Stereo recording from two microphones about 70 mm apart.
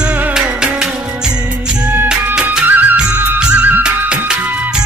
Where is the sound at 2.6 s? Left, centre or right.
Right.